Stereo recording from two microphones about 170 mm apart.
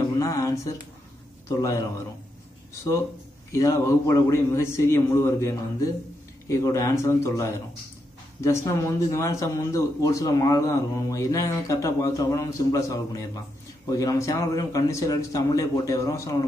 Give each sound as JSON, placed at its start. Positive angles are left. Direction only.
{"t": 0.2, "sound": "speech", "side_deg": 20}
{"t": 3.5, "sound": "a man's voice", "side_deg": 20}